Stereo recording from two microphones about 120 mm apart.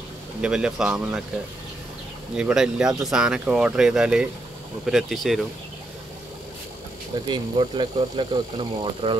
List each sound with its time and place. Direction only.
0.4 s speech: 5° right (ahead or behind)
2.3 s speech: 5° right (ahead or behind)
7.2 s speech: 40° right (ahead or behind)